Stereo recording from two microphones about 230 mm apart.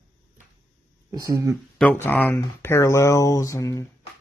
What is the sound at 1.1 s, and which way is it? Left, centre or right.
Speech, centre.